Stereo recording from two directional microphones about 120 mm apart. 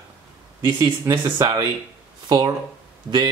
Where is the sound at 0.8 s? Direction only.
30° right (ahead or behind).